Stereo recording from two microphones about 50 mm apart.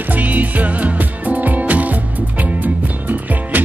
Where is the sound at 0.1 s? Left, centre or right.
Right.